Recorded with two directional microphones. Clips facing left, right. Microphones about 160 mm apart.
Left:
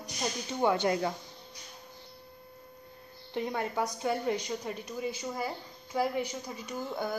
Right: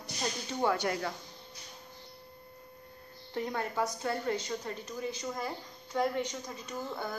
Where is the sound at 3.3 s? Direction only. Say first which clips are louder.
Left 2 dB; 20° left (ahead or behind).